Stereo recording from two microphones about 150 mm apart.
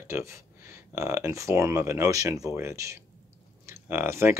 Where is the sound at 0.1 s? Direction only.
20° right (ahead or behind).